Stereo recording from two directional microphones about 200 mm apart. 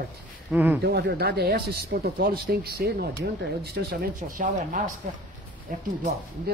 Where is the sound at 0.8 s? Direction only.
50° right (ahead or behind).